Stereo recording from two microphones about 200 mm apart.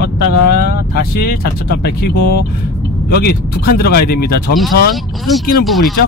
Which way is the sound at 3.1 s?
50° left (ahead or behind).